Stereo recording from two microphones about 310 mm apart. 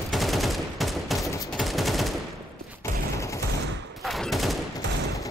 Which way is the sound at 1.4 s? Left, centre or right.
Centre.